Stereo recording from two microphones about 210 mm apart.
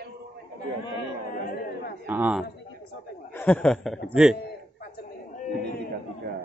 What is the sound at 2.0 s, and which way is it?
Speech, 10° right (ahead or behind).